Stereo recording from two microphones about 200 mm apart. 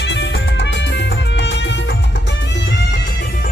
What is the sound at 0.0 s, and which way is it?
Music, 60° left (ahead or behind).